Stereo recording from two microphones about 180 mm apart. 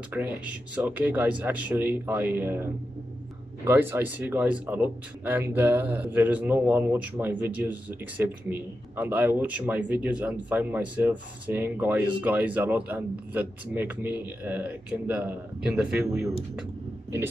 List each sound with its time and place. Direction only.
0.1 s speech: 10° right (ahead or behind)